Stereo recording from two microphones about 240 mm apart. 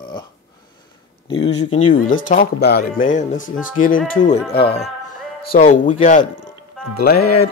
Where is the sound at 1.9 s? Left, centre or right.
Left.